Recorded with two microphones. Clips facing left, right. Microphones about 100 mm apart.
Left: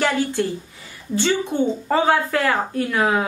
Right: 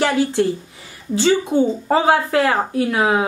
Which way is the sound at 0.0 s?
25° right (ahead or behind).